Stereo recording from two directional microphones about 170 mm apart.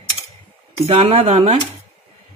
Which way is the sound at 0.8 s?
35° right (ahead or behind).